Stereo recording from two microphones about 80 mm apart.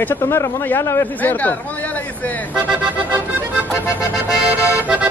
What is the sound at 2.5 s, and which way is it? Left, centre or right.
Music, centre.